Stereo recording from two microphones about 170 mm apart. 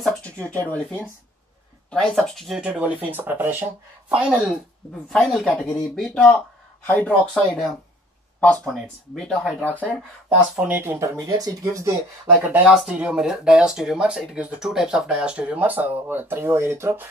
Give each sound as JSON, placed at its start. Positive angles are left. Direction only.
{"t": 0.0, "sound": "speech", "side_deg": 5}
{"t": 10.5, "sound": "speech", "side_deg": -10}
{"t": 12.4, "sound": "speech", "side_deg": -10}